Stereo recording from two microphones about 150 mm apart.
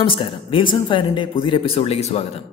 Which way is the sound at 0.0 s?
35° left (ahead or behind).